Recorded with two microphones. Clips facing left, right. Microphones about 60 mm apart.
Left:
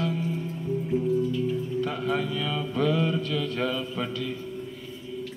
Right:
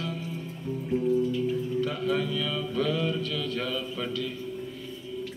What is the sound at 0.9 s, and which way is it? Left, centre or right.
Music, centre.